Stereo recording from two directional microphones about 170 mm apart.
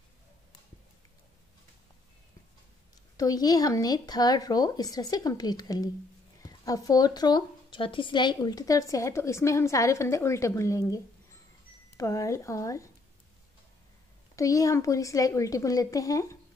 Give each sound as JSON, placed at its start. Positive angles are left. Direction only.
{"t": 3.2, "sound": "a woman's voice", "side_deg": 20}
{"t": 12.0, "sound": "a woman's voice", "side_deg": 20}
{"t": 14.3, "sound": "a woman's voice", "side_deg": 20}